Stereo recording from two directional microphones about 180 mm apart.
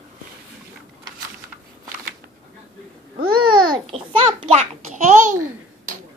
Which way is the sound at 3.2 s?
30° right (ahead or behind).